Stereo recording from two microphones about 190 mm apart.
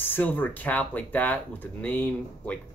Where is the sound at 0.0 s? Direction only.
10° left (ahead or behind).